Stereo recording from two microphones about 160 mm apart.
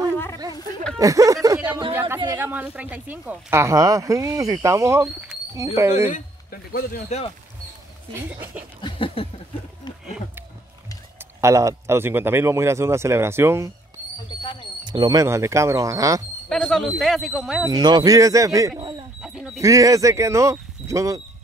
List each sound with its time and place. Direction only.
0.1 s a sound: 15° left (ahead or behind)
0.9 s speech: 20° right (ahead or behind)
6.1 s a man's voice: 70° left (ahead or behind)
7.1 s a sound: 40° left (ahead or behind)
8.1 s speech: 15° right (ahead or behind)
8.8 s a sound: 35° left (ahead or behind)
11.4 s speech: 20° right (ahead or behind)
14.3 s a sound: 25° left (ahead or behind)
14.9 s speech: 25° right (ahead or behind)
16.4 s speech: 5° left (ahead or behind)
17.6 s speech: 25° right (ahead or behind)
19.2 s bird: 5° right (ahead or behind)
19.6 s speech: 20° right (ahead or behind)